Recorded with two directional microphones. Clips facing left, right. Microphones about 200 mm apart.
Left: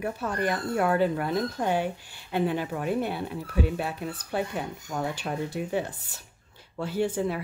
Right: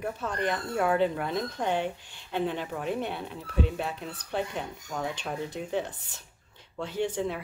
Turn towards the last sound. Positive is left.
turn(degrees=5)  # may be behind; listen again after turning